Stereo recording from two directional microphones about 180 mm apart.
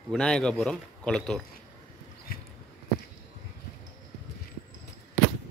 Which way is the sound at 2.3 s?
55° left (ahead or behind).